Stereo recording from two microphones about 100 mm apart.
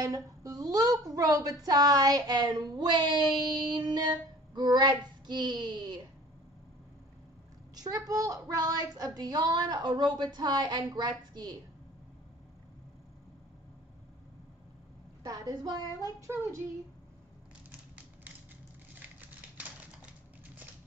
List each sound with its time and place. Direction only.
0.0 s a woman's voice: 35° right (ahead or behind)
7.7 s a woman's voice: 40° right (ahead or behind)
15.2 s a woman's voice: 35° right (ahead or behind)
16.2 s child singing: 25° right (ahead or behind)